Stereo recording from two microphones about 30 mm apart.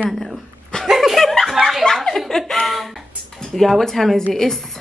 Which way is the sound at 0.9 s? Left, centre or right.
Centre.